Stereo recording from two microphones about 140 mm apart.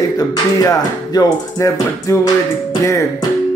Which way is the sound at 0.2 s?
25° left (ahead or behind).